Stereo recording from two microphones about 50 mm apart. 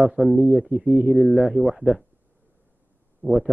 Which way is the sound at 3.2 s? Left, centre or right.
Centre.